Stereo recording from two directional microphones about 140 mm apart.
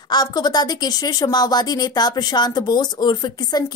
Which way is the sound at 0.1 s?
30° left (ahead or behind).